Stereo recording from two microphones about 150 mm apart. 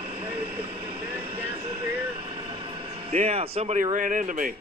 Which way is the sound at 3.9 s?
60° right (ahead or behind).